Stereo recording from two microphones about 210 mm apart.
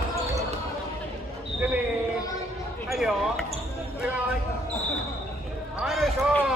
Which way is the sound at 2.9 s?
Centre (ahead or behind).